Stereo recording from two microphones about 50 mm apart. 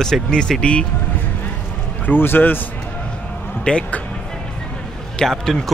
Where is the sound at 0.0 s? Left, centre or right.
Centre.